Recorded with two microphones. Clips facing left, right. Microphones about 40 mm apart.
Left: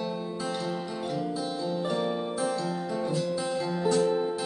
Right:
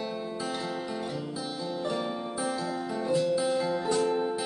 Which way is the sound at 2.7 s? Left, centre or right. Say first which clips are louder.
Right 1 dB; centre.